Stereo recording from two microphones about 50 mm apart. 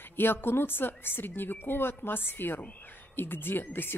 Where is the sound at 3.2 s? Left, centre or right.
Left.